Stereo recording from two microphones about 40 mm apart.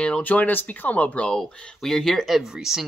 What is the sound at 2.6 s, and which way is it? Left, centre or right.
Speech, centre.